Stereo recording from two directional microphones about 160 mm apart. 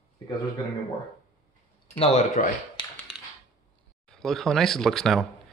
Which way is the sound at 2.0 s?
40° left (ahead or behind).